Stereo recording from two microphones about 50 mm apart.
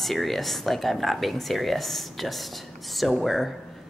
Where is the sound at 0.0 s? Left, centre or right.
Centre.